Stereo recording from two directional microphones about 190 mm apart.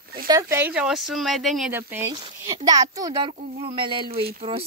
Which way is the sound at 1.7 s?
10° right (ahead or behind).